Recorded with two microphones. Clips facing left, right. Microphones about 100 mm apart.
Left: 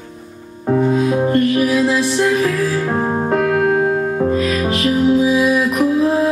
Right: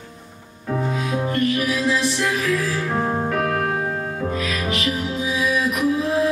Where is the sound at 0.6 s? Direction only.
35° left (ahead or behind).